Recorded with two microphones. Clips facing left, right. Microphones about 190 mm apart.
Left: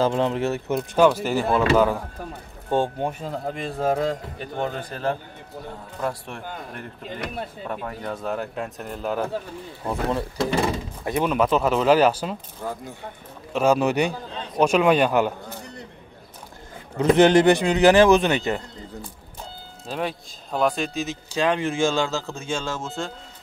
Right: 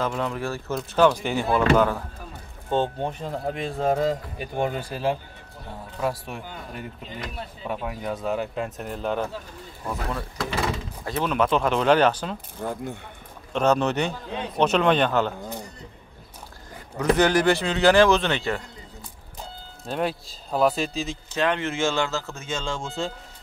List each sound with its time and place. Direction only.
0.0 s a man's voice: 30° left (ahead or behind)
0.7 s a man's voice: 5° left (ahead or behind)
9.8 s a man's voice: 30° left (ahead or behind)
11.1 s a man's voice: 10° left (ahead or behind)
13.5 s speech: 5° left (ahead or behind)
17.0 s a man's voice: 25° left (ahead or behind)
19.9 s a man's voice: centre (ahead or behind)
21.4 s speech: 15° left (ahead or behind)